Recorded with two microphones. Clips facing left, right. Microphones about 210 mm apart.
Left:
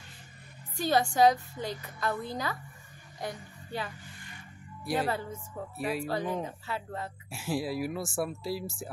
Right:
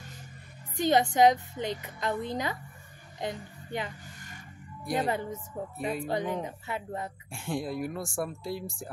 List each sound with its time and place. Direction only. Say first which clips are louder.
0.7 s a woman's voice: right 2 dB; 20° right (ahead or behind)
5.0 s a woman's voice: right 2 dB; 20° right (ahead or behind)
7.2 s speech: left 2 dB; 5° left (ahead or behind)